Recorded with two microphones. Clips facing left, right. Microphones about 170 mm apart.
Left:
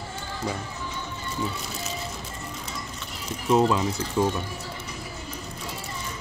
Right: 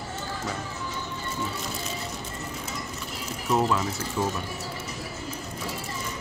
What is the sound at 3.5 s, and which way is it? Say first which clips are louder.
Speech: left 3 dB; 20° left (ahead or behind).